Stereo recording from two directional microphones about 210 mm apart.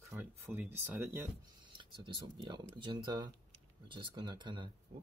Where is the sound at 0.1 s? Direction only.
10° right (ahead or behind).